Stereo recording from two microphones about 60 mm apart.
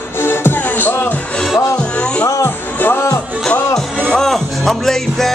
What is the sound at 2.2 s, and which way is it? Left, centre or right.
Music, left.